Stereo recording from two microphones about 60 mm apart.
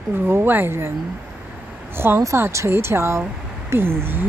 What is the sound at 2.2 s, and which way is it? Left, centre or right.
Speech, right.